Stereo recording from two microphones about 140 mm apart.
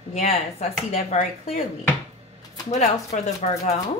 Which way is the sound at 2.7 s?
55° left (ahead or behind).